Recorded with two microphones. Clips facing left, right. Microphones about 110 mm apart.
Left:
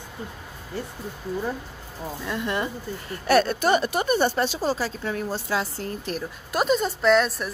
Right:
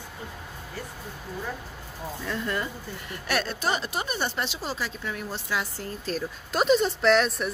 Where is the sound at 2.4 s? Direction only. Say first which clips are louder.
Left 4 dB; 20° left (ahead or behind).